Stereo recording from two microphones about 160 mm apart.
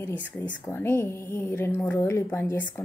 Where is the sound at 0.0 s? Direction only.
10° left (ahead or behind).